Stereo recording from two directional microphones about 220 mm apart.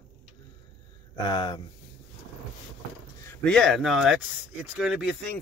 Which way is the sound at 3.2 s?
5° left (ahead or behind).